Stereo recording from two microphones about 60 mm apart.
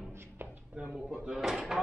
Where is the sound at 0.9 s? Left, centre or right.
Centre.